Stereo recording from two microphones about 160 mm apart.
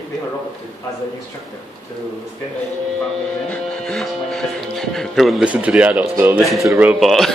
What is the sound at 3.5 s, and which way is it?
Speech, 5° left (ahead or behind).